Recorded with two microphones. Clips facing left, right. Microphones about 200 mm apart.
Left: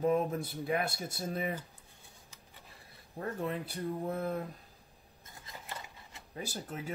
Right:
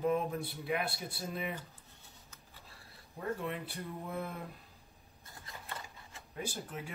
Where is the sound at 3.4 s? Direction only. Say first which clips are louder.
Left 4 dB; 40° left (ahead or behind).